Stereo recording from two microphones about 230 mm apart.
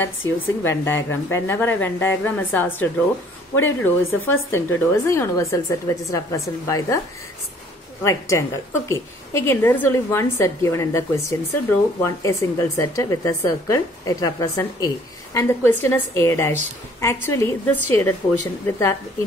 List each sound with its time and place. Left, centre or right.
0.0 s a woman's voice: centre
8.0 s a woman's voice: centre